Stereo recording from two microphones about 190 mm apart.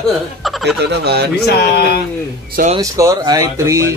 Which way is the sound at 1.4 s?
55° left (ahead or behind).